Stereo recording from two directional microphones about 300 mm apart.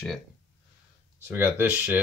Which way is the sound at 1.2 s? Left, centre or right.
Centre.